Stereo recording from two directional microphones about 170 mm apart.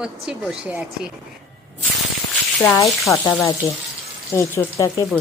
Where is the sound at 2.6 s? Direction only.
10° left (ahead or behind).